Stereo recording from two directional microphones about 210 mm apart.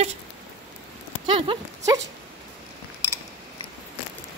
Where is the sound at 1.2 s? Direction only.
25° right (ahead or behind).